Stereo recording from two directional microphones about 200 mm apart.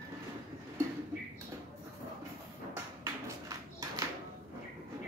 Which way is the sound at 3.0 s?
20° right (ahead or behind).